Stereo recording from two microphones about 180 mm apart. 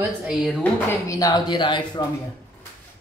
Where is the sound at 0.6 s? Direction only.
20° left (ahead or behind).